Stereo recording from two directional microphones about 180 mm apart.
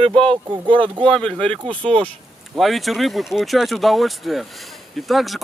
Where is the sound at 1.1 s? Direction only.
5° left (ahead or behind).